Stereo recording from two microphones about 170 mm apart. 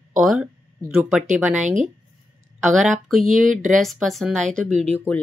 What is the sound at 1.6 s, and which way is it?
Speech, 45° right (ahead or behind).